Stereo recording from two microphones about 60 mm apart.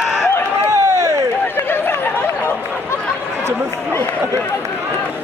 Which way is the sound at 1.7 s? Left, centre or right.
Left.